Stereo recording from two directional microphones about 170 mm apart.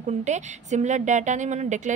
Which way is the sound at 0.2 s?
45° right (ahead or behind).